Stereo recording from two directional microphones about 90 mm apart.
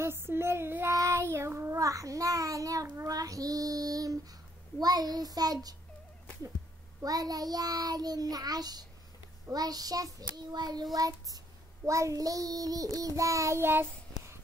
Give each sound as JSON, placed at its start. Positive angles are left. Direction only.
{"t": 0.0, "sound": "child singing", "side_deg": -25}
{"t": 7.0, "sound": "child singing", "side_deg": -45}